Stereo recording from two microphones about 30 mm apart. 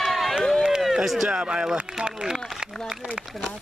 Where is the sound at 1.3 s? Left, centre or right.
Right.